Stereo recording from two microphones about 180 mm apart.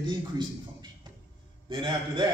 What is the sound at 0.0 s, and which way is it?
A man's voice, 25° right (ahead or behind).